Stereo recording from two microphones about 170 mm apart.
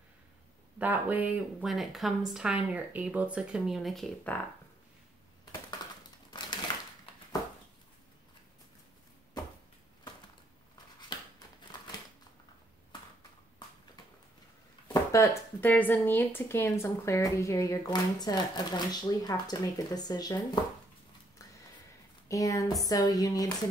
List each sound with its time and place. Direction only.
0.7 s speech: 10° right (ahead or behind)
5.4 s typing: 25° left (ahead or behind)
7.1 s a sound: 30° left (ahead or behind)
11.1 s a sound: 25° left (ahead or behind)
14.9 s speech: 15° left (ahead or behind)
22.3 s speech: 20° left (ahead or behind)